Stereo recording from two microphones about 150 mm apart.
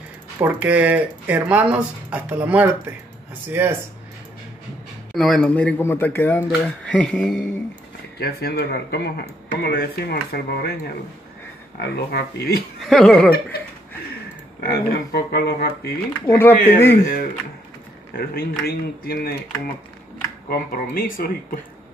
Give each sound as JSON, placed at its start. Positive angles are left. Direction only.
{"t": 0.4, "sound": "speech", "side_deg": -10}
{"t": 5.1, "sound": "speech", "side_deg": 0}
{"t": 8.2, "sound": "speech", "side_deg": 90}
{"t": 11.9, "sound": "speech", "side_deg": 90}
{"t": 12.8, "sound": "speech", "side_deg": 5}
{"t": 14.6, "sound": "speech", "side_deg": 90}
{"t": 16.1, "sound": "speech", "side_deg": 15}
{"t": 18.1, "sound": "speech", "side_deg": 80}
{"t": 18.7, "sound": "speech", "side_deg": 90}
{"t": 20.4, "sound": "speech", "side_deg": 75}